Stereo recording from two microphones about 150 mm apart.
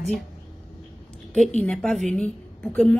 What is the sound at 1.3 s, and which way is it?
Speech, 5° left (ahead or behind).